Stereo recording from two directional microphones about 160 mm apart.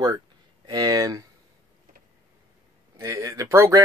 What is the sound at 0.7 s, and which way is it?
Speech, 25° right (ahead or behind).